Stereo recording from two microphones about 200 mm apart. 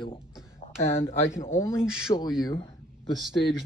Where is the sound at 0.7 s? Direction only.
10° left (ahead or behind).